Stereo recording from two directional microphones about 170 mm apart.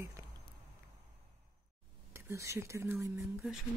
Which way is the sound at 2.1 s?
15° right (ahead or behind).